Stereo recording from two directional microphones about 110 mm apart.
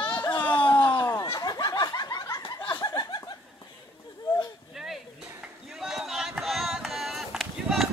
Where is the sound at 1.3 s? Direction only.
40° left (ahead or behind).